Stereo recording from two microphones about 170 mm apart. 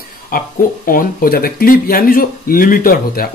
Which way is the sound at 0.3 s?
55° left (ahead or behind).